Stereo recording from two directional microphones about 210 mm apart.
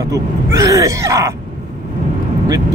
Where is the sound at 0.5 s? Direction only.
15° right (ahead or behind).